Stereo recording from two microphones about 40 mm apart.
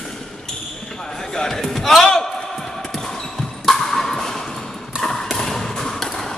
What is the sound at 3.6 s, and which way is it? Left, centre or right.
Music, centre.